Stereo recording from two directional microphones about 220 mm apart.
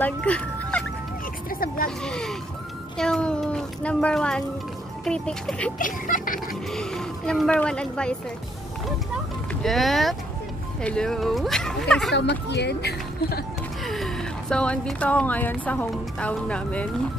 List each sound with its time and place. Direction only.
0.0 s speech: 5° left (ahead or behind)
1.5 s a sound: 40° left (ahead or behind)
2.0 s speech: 5° left (ahead or behind)
5.8 s speech: 35° left (ahead or behind)
6.5 s speech: centre (ahead or behind)
9.5 s speech: centre (ahead or behind)
12.1 s speech: 50° left (ahead or behind)
13.8 s speech: centre (ahead or behind)